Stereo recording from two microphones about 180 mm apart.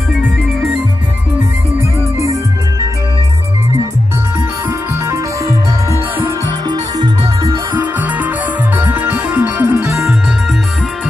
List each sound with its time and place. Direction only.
1.8 s music: 15° right (ahead or behind)
4.6 s music: 15° right (ahead or behind)
6.7 s music: 25° right (ahead or behind)
7.7 s music: 10° right (ahead or behind)